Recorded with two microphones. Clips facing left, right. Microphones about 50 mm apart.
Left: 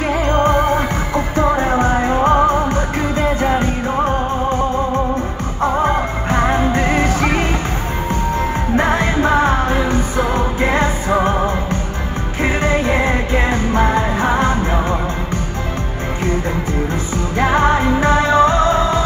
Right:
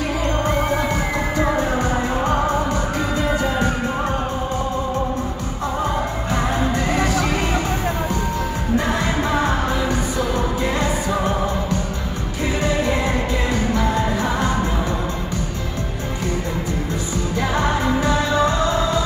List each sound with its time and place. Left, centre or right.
0.2 s music: left
5.6 s music: left
8.7 s music of asia: left
12.4 s music: left
17.4 s music: left